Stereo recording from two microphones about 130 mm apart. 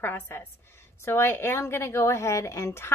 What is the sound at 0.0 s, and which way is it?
A woman's voice, 15° left (ahead or behind).